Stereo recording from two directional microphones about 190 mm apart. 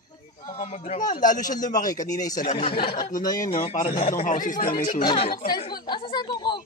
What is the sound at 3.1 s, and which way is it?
Speech, 45° left (ahead or behind).